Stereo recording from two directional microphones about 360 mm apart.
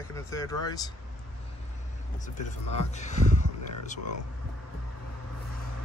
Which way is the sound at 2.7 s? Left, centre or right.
Centre.